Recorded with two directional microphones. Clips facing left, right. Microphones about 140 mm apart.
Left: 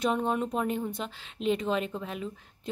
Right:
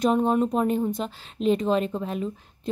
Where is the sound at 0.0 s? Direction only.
40° right (ahead or behind).